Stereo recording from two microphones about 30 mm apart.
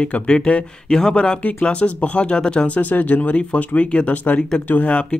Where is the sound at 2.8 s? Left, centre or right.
Left.